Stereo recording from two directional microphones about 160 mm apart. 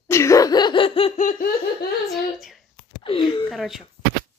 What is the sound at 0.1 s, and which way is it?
Laughter, 20° left (ahead or behind).